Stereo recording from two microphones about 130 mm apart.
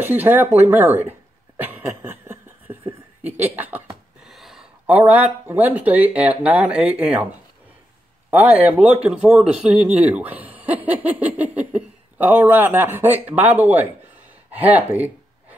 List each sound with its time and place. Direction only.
0.0 s speech: 15° right (ahead or behind)
1.6 s a sound: 15° right (ahead or behind)
3.5 s speech: 15° right (ahead or behind)
4.3 s speech: centre (ahead or behind)
8.3 s speech: 15° right (ahead or behind)